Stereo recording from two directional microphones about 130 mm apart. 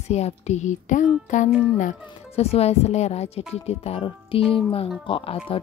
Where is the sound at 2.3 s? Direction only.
50° left (ahead or behind).